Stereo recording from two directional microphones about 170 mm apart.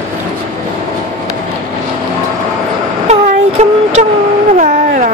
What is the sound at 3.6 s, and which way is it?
Speech, 40° right (ahead or behind).